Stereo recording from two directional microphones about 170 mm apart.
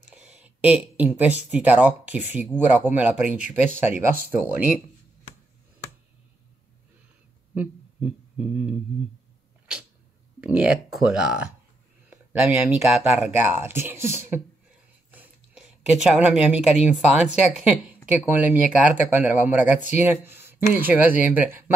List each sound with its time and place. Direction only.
0.1 s speech: 5° right (ahead or behind)
7.5 s speech: 5° right (ahead or behind)
10.4 s speech: 5° right (ahead or behind)